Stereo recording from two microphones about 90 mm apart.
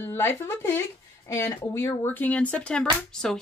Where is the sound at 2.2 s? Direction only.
15° left (ahead or behind).